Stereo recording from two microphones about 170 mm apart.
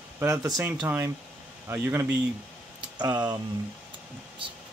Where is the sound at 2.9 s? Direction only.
25° right (ahead or behind).